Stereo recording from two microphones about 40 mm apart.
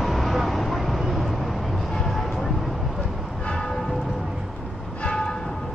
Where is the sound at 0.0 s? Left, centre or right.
Centre.